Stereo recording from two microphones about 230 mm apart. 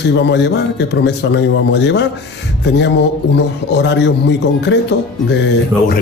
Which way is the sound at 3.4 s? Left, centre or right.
Left.